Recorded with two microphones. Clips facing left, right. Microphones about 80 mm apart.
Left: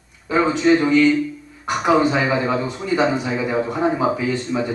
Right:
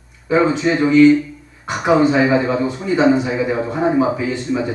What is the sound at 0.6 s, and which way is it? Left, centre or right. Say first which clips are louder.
A man's voice: right 2 dB; centre.